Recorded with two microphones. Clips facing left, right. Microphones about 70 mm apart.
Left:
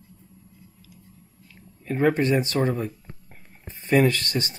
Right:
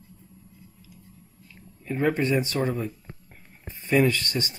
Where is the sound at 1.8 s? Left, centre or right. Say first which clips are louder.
Left 3 dB; left.